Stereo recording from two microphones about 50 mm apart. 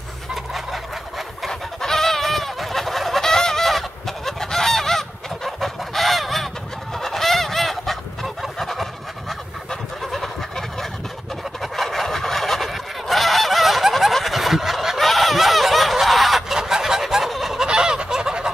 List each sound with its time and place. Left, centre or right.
1.5 s fowl: centre
7.0 s goose: centre
11.6 s fowl: centre
17.6 s fowl: centre